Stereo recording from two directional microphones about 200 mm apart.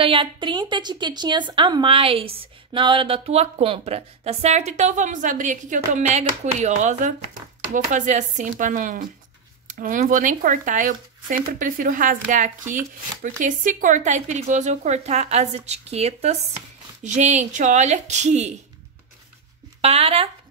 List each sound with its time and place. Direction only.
0.0 s speech: 25° right (ahead or behind)
19.8 s speech: 30° right (ahead or behind)